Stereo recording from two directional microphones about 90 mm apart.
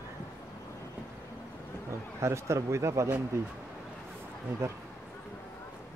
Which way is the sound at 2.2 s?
30° right (ahead or behind).